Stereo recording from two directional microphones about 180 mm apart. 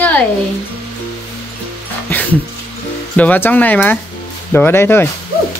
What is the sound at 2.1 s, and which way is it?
Music, 10° left (ahead or behind).